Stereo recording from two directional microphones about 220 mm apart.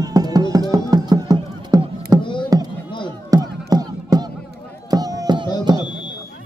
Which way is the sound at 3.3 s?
15° right (ahead or behind).